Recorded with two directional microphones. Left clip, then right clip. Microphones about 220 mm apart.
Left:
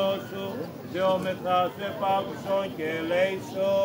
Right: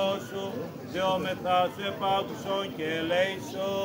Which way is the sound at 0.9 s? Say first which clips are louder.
Left 3 dB; 45° right (ahead or behind).